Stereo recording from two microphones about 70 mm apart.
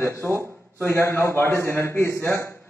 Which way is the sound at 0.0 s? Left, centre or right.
Left.